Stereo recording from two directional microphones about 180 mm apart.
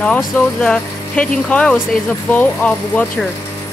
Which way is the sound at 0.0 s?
5° left (ahead or behind).